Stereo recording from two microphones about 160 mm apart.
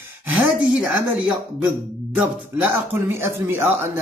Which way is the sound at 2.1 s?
10° right (ahead or behind).